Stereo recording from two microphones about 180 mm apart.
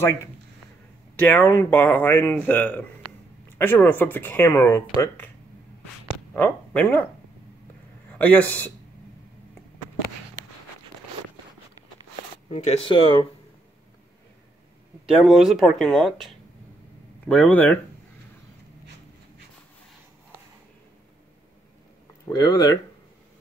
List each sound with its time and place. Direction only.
1.2 s speech: 10° left (ahead or behind)
6.3 s speech: 10° left (ahead or behind)
8.1 s speech: 10° left (ahead or behind)
12.4 s speech: 40° left (ahead or behind)
15.2 s speech: centre (ahead or behind)
17.3 s speech: 10° left (ahead or behind)
22.3 s speech: 20° left (ahead or behind)